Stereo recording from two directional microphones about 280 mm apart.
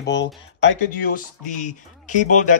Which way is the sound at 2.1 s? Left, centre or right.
Left.